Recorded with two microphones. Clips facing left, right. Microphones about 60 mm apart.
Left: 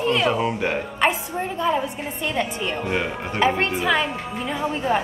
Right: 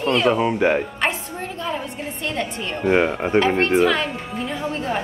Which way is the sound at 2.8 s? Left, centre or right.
Right.